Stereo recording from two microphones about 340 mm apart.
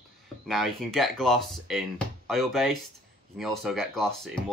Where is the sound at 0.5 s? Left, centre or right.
Centre.